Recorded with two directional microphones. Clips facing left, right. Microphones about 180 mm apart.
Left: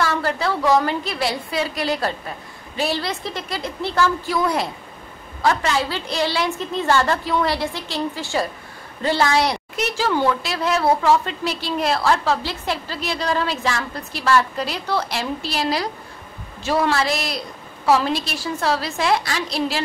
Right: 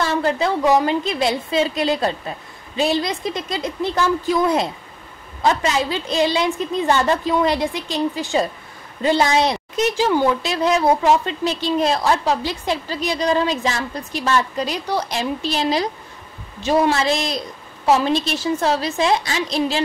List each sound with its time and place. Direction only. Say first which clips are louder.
0.0 s a woman's voice: right 2 dB; 20° right (ahead or behind)